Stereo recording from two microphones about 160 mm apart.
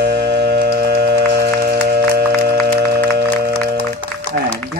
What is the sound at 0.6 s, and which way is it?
Music, 90° right.